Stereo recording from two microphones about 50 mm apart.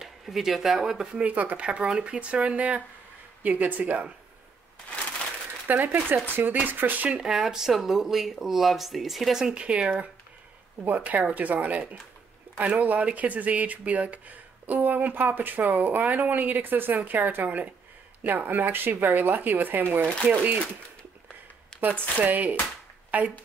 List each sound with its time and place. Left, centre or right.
0.0 s speech: centre
1.2 s speech: right
5.7 s speech: right
7.2 s speech: centre
9.4 s speech: centre; by 20.6 s right
21.7 s a sound: centre
22.2 s speech: right